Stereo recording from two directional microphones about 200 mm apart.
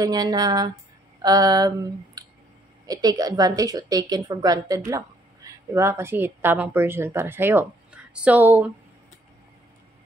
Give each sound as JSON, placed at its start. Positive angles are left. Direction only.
{"t": 0.0, "sound": "speech", "side_deg": -20}
{"t": 2.9, "sound": "a woman's voice", "side_deg": -20}